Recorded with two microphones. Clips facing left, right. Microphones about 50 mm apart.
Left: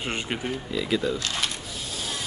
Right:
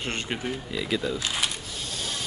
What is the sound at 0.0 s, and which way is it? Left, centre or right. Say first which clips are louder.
Speech: left 1 dB; centre.